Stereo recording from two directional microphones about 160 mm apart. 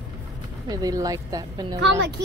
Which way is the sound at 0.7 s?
25° right (ahead or behind).